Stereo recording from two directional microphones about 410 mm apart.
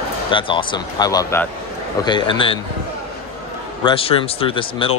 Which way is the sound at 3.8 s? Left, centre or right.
Centre.